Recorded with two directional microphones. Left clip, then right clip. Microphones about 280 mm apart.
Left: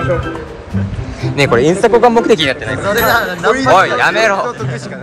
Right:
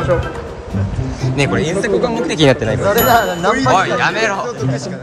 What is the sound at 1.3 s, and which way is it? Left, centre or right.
Music, centre.